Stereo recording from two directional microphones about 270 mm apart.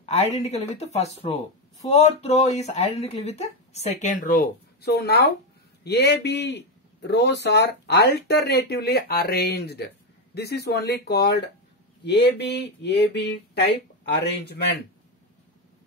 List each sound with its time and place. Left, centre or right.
0.0 s a man's voice: left